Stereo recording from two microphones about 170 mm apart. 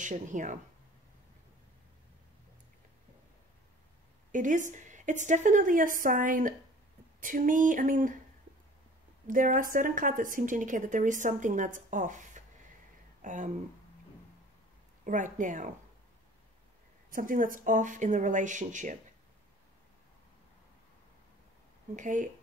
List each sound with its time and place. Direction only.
0.0 s a woman's voice: 50° right (ahead or behind)
4.3 s a woman's voice: 50° right (ahead or behind)
9.3 s a woman's voice: 50° right (ahead or behind)
15.0 s a woman's voice: 50° right (ahead or behind)
17.1 s a woman's voice: 50° right (ahead or behind)
21.9 s a woman's voice: 50° right (ahead or behind)